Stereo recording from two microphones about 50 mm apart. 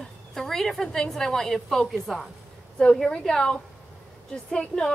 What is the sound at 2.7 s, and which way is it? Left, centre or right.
Speech, centre.